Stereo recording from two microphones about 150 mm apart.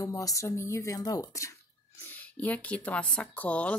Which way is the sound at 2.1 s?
10° left (ahead or behind).